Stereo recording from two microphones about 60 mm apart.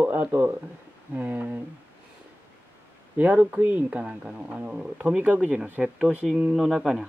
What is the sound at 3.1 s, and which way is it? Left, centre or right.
Speech, right.